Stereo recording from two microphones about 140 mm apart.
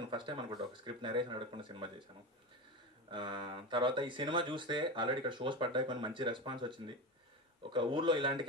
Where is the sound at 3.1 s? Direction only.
35° right (ahead or behind).